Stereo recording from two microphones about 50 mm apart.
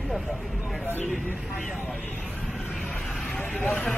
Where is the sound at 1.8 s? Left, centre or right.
Left.